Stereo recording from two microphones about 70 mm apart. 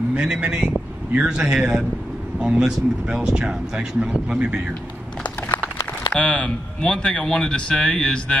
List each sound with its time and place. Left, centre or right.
0.2 s speech: centre
5.2 s a sound: left
6.1 s speech: centre